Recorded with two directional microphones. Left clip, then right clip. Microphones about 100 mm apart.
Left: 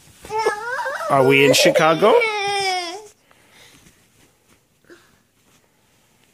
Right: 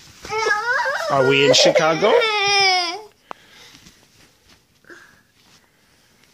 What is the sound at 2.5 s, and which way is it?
Baby cry, 35° left (ahead or behind).